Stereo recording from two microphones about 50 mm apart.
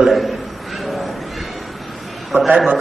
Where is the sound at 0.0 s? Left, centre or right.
Centre.